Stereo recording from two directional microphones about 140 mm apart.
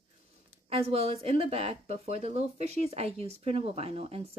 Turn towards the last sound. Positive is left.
turn(degrees=-45)  # may be behind; listen again after turning